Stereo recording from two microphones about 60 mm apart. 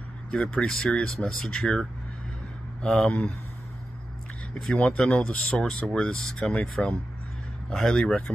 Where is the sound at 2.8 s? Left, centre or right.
Centre.